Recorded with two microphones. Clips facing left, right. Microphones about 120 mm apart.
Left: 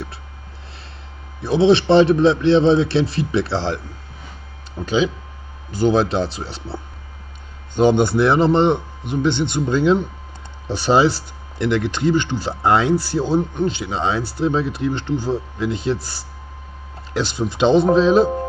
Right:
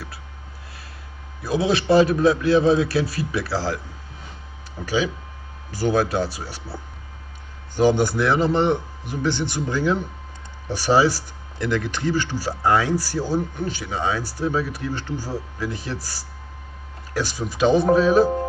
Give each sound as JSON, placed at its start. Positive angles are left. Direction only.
{"t": 1.4, "sound": "speech", "side_deg": 25}
{"t": 4.8, "sound": "speech", "side_deg": 20}